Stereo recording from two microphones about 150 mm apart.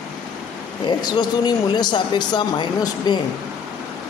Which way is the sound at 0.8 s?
30° left (ahead or behind).